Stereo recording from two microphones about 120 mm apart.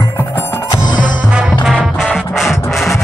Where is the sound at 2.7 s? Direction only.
Centre (ahead or behind).